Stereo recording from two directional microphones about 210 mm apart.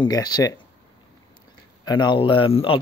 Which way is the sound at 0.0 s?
20° left (ahead or behind).